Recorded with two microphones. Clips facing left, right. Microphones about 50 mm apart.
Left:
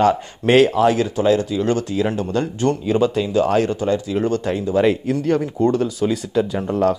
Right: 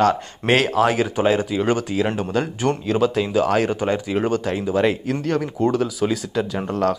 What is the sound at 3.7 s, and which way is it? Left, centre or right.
Speech, right.